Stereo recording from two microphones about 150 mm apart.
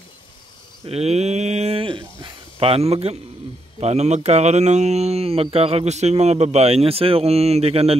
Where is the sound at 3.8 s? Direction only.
50° right (ahead or behind).